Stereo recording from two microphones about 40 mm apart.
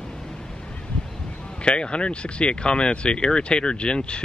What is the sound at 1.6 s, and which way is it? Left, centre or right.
Speech, left.